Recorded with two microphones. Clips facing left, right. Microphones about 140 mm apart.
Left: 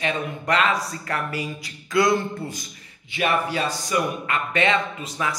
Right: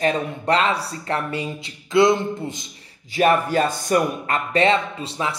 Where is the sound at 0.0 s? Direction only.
35° right (ahead or behind).